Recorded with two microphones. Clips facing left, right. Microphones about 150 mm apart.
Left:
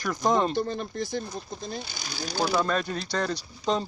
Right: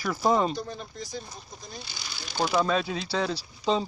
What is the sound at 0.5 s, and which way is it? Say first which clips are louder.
Speech: left 7 dB; 65° left (ahead or behind).